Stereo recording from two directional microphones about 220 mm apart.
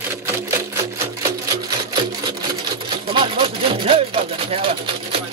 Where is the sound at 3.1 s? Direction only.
25° right (ahead or behind).